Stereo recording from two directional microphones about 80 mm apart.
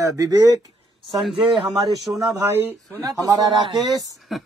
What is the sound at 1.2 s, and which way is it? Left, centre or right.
Speech, centre.